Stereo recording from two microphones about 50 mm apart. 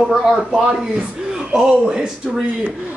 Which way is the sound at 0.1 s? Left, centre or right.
Centre.